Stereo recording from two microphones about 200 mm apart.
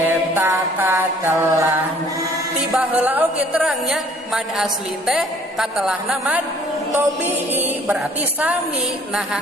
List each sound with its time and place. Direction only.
0.3 s mantra: 10° right (ahead or behind)
2.7 s a woman's voice: 5° right (ahead or behind)
7.0 s mantra: 10° right (ahead or behind)